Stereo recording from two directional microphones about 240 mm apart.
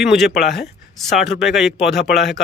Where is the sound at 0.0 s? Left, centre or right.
Centre.